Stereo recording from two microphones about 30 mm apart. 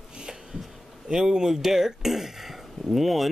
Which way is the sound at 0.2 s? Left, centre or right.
Right.